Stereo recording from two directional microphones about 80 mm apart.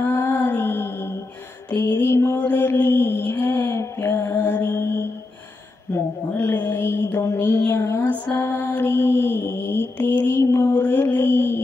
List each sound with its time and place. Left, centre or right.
0.0 s music: left
1.7 s mantra: left
6.3 s a sound: left
8.4 s mantra: left